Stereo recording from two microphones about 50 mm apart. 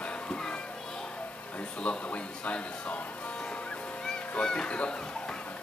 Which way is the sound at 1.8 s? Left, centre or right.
Left.